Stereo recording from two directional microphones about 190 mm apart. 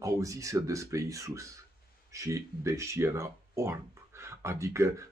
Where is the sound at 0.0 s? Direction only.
15° right (ahead or behind).